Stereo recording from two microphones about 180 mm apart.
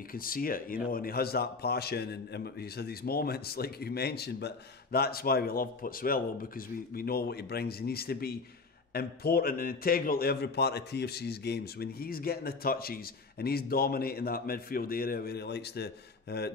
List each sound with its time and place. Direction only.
0.1 s speech: 50° left (ahead or behind)